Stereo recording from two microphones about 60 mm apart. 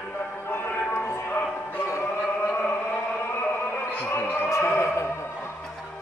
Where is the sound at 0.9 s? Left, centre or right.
Left.